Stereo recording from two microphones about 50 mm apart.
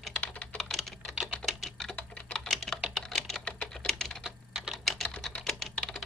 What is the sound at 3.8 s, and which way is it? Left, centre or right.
Typing, centre.